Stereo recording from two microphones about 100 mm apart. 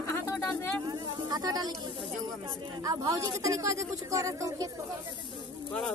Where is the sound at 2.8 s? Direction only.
35° right (ahead or behind).